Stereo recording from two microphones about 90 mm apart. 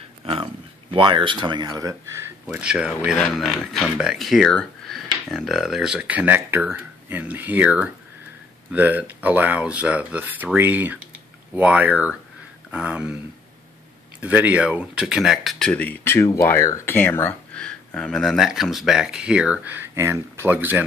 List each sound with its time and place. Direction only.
0.2 s a sound: 90° right
0.9 s speech: 65° right (ahead or behind)
1.8 s speech: 40° right (ahead or behind)
2.6 s speech: 10° right (ahead or behind)
14.2 s speech: 15° right (ahead or behind); by 15.7 s centre (ahead or behind)
15.7 s speech: 20° left (ahead or behind)
16.9 s speech: 20° left (ahead or behind)
17.6 s speech: 10° left (ahead or behind); by 20.8 s 20° right (ahead or behind)